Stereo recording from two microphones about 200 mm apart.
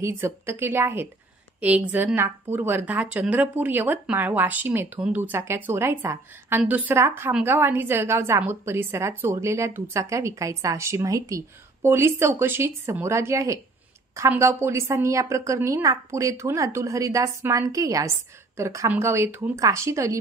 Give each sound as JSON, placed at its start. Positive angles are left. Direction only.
{"t": 0.0, "sound": "a woman's voice", "side_deg": -10}